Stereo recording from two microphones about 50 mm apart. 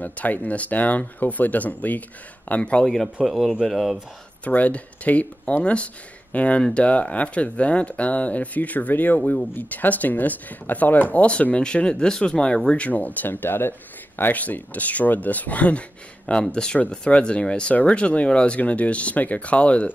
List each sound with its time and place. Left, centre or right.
0.0 s speech: left
3.3 s speech: centre
4.5 s speech: left
12.8 s speech: left
16.3 s speech: centre